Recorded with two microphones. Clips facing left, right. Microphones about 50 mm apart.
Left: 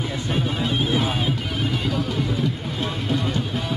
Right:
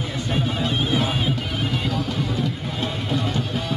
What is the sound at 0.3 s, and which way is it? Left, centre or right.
Music, centre.